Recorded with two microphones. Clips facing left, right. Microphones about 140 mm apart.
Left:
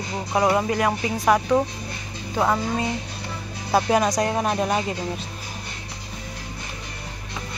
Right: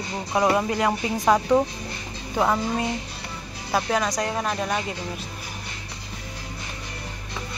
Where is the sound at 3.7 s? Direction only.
20° left (ahead or behind).